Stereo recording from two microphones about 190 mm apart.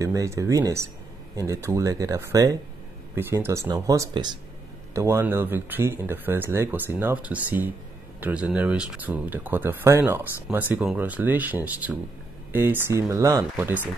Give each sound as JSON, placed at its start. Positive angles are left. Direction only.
{"t": 0.0, "sound": "speech", "side_deg": -15}